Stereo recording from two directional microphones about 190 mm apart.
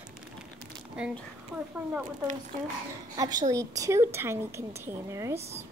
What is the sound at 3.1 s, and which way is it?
A woman's voice, 20° right (ahead or behind).